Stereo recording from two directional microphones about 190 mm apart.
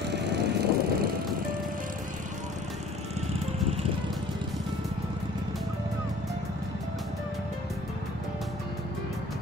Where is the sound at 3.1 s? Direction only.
35° right (ahead or behind).